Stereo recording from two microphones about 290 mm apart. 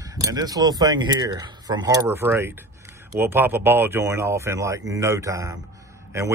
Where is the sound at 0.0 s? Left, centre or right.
Centre.